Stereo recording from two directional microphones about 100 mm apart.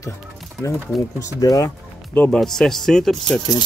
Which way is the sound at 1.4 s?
35° left (ahead or behind).